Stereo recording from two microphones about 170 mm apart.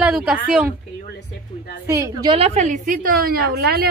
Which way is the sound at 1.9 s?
20° right (ahead or behind).